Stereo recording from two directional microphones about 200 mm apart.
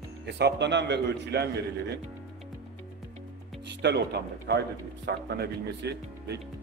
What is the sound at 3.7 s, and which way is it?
Speech, 55° right (ahead or behind).